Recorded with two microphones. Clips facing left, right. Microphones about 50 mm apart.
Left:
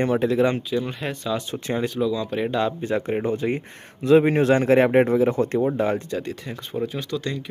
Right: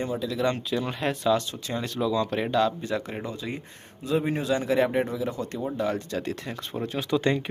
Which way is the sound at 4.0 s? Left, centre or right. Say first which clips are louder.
Left 10 dB; left.